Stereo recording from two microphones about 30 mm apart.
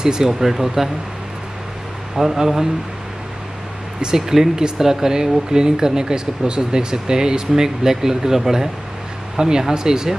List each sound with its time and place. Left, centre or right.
0.0 s speech: right
0.3 s speech: centre
2.3 s speech: centre
4.0 s speech: centre